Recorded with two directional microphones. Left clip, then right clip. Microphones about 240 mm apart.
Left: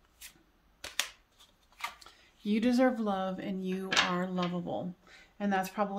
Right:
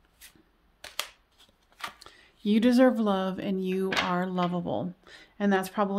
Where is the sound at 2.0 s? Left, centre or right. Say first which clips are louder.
Right 6 dB; right.